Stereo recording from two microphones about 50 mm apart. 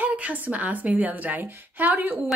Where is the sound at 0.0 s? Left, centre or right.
Right.